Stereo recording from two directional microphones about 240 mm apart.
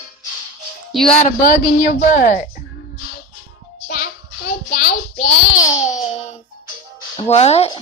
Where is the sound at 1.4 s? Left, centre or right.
Left.